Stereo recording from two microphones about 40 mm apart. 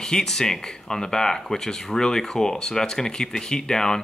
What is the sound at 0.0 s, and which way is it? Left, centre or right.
Speech, centre.